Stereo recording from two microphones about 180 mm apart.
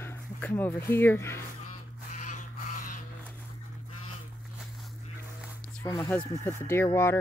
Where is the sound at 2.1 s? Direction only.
45° left (ahead or behind).